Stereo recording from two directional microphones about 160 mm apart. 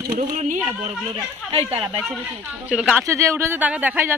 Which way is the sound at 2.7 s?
5° right (ahead or behind).